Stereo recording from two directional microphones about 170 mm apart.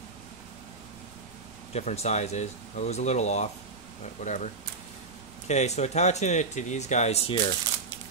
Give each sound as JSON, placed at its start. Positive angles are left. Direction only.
{"t": 1.7, "sound": "speech", "side_deg": 40}
{"t": 5.5, "sound": "speech", "side_deg": 40}